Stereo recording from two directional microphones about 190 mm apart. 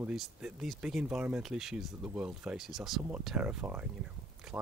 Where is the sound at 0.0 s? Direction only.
5° right (ahead or behind).